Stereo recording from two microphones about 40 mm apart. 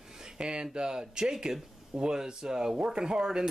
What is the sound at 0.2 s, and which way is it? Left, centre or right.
Speech, centre.